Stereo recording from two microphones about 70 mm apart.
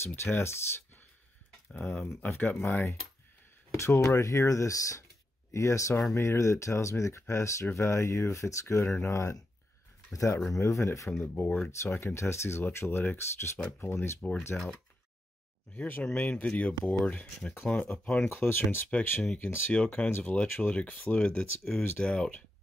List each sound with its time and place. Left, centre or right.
0.0 s speech: left
1.7 s speech: left
11.1 s speech: left
11.9 s speech: left
14.5 s speech: centre
15.7 s speech: centre
18.3 s speech: left; by 22.4 s centre